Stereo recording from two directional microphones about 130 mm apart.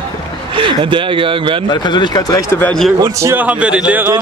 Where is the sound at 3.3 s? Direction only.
10° right (ahead or behind).